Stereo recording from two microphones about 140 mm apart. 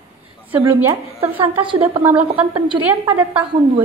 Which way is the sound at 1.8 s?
10° right (ahead or behind).